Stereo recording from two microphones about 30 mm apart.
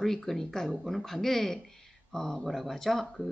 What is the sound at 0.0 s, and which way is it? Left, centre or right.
Speech, centre.